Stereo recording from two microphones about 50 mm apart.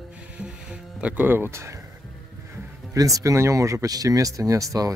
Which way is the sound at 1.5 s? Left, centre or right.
Right.